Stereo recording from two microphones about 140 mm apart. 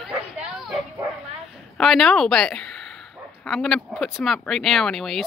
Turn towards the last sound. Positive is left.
turn(degrees=0)  # may be behind; listen again after turning